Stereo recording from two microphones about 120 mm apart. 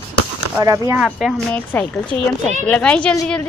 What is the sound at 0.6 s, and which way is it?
Speech, 30° right (ahead or behind).